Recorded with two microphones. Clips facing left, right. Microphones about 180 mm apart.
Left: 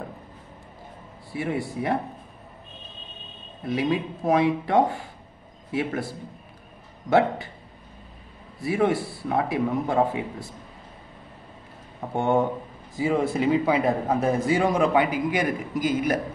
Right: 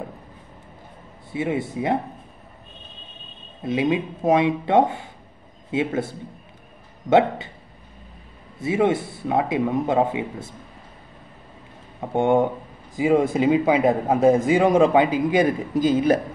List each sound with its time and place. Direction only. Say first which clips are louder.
1.3 s a man's voice: right 3 dB; 20° right (ahead or behind)
3.6 s a man's voice: right 3 dB; 20° right (ahead or behind)
8.5 s a man's voice: right 2 dB; 20° right (ahead or behind)
12.1 s a man's voice: right 4 dB; 15° right (ahead or behind)